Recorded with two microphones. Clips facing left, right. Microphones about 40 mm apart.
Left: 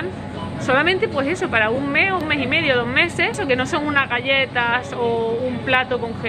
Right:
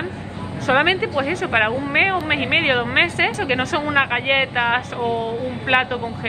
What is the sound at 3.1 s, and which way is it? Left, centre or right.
Speech, centre.